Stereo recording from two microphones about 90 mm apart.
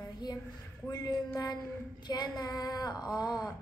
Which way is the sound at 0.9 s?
45° left (ahead or behind).